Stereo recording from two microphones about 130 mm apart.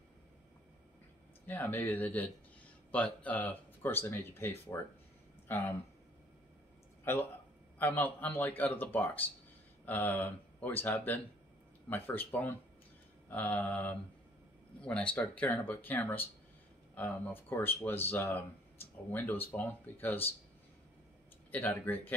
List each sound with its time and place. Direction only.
1.5 s speech: 15° left (ahead or behind)
7.1 s speech: 15° left (ahead or behind)
21.5 s speech: 15° left (ahead or behind)